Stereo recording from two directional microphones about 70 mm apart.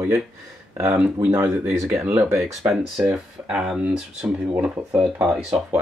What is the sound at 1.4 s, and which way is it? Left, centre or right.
Speech, right.